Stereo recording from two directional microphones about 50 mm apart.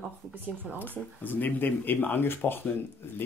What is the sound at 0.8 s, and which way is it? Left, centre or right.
Speech, left.